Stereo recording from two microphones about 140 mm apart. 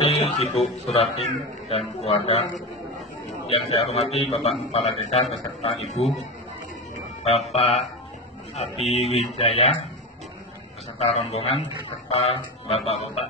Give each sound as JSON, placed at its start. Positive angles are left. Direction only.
{"t": 0.0, "sound": "a man's voice", "side_deg": 50}
{"t": 3.4, "sound": "a man's voice", "side_deg": 45}
{"t": 7.2, "sound": "a man's voice", "side_deg": 50}
{"t": 11.0, "sound": "a man's voice", "side_deg": 50}